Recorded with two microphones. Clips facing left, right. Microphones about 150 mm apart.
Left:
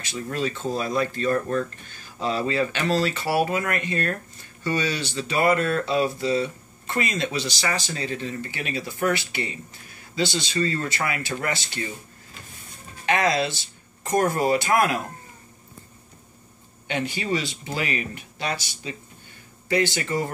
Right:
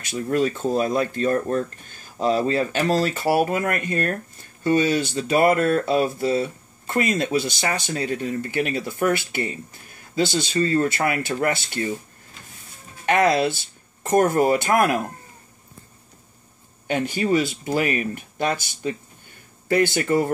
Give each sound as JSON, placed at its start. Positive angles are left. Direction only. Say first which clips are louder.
{"t": 0.0, "sound": "speech", "louder": "right 6 dB", "side_deg": -50}
{"t": 13.0, "sound": "speech", "louder": "right 4 dB", "side_deg": -50}
{"t": 16.8, "sound": "speech", "louder": "right 5 dB", "side_deg": -45}